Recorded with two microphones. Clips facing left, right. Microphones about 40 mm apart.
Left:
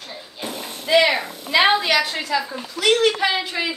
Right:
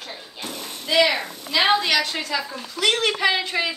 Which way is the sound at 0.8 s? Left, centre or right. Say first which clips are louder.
Left 3 dB; centre.